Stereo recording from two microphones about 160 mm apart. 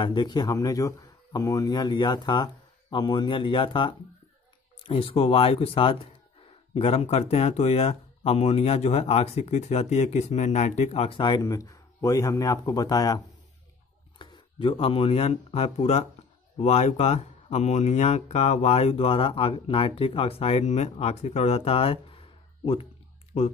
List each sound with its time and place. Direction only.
0.0 s speech: 25° left (ahead or behind)
23.3 s speech: 40° left (ahead or behind)